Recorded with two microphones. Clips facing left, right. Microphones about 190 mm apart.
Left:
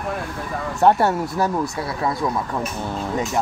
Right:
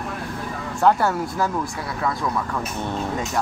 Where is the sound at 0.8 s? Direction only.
25° left (ahead or behind).